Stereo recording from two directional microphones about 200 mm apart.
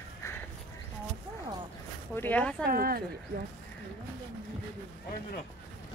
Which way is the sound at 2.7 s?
45° right (ahead or behind).